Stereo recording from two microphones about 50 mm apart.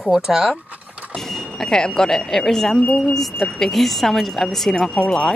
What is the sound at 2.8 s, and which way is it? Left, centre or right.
Speech, left.